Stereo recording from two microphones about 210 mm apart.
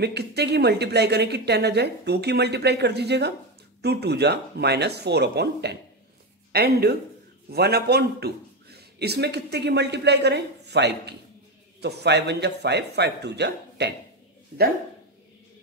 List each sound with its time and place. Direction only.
0.0 s a man's voice: 50° right (ahead or behind)
14.5 s speech: 40° right (ahead or behind)